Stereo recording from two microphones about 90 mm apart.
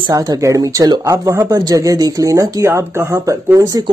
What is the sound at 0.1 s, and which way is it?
Speech, 40° right (ahead or behind).